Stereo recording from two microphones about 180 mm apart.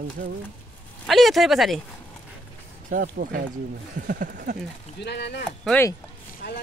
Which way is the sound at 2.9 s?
55° right (ahead or behind).